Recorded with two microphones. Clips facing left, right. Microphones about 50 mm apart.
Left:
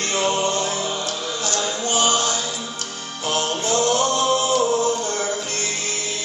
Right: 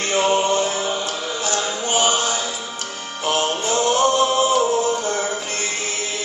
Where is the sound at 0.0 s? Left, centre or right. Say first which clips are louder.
Right 3 dB; centre.